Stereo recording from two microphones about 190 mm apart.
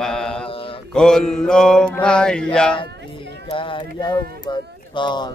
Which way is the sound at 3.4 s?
25° left (ahead or behind).